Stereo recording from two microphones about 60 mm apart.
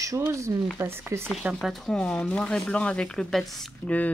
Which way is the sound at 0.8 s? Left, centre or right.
Right.